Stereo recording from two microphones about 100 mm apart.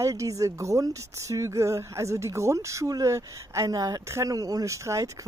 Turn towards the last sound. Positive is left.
turn(degrees=-30)  # may be behind; listen again after turning